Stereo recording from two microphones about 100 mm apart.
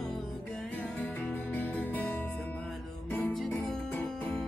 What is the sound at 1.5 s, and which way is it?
Music, 15° left (ahead or behind).